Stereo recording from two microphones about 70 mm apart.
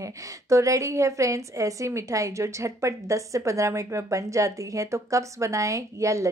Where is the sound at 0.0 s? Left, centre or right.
Right.